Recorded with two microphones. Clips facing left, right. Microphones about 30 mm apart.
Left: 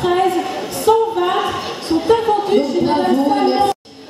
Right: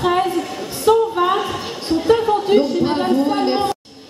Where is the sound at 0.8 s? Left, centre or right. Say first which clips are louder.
Even; centre.